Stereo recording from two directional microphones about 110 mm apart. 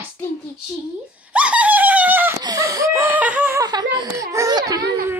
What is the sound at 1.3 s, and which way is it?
Dog, 10° right (ahead or behind).